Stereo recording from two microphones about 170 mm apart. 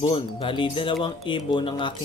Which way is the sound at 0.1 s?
30° left (ahead or behind).